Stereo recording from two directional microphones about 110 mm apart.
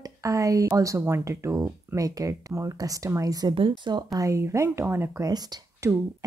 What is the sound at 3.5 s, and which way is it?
Speech, 50° right (ahead or behind).